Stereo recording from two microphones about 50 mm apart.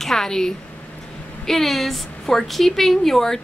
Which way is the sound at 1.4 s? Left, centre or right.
Centre.